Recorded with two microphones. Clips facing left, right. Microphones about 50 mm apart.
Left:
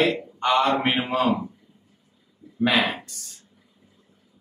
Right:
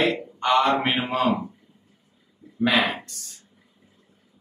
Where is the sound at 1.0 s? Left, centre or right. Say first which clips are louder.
Left 1 dB; centre.